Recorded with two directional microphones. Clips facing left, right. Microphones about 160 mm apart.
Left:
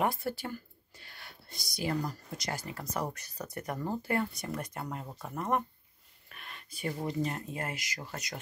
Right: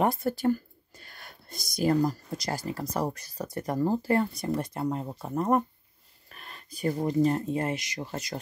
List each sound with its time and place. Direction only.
0.0 s speech: 40° right (ahead or behind)